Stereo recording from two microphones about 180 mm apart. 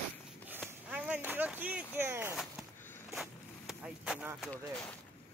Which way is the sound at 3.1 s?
Centre (ahead or behind).